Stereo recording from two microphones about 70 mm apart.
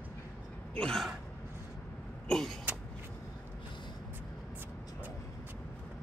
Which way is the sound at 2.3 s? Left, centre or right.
Centre.